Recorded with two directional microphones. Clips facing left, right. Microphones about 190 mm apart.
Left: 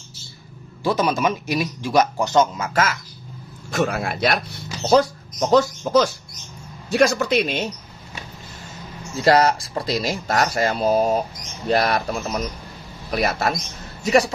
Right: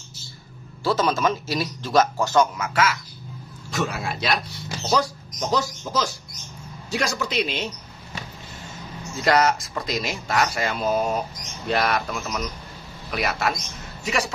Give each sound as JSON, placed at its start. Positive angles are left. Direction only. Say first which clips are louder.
{"t": 0.8, "sound": "speech", "louder": "left 1 dB", "side_deg": 15}
{"t": 2.7, "sound": "speech", "louder": "left 1 dB", "side_deg": 45}
{"t": 9.1, "sound": "speech", "louder": "left 3 dB", "side_deg": 30}